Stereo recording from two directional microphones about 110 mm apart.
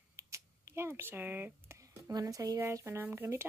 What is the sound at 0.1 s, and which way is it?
Typing, 25° right (ahead or behind).